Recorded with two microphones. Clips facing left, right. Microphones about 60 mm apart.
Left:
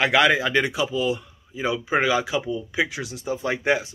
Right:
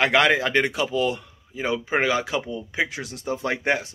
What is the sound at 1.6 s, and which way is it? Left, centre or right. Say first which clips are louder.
A man's voice: left 1 dB; right.